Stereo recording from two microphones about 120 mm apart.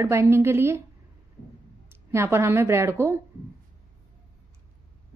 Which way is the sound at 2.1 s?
20° right (ahead or behind).